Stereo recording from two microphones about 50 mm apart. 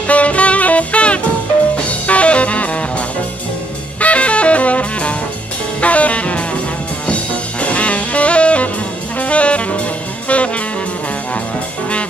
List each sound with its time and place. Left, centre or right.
0.0 s saxophone: left
1.9 s music: left
4.0 s music: left
5.8 s saxophone: left
7.6 s music: left
9.2 s saxophone: left